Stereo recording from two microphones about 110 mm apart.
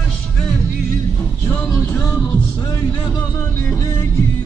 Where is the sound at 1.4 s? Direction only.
25° left (ahead or behind).